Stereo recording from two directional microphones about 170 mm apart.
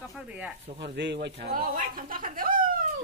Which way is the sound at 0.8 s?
85° right.